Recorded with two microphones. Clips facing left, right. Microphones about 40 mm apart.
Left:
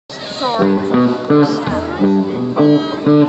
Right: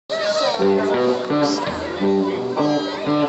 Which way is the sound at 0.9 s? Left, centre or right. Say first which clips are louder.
Left 6 dB; centre.